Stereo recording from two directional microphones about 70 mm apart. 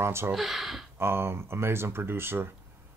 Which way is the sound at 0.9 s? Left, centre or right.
Right.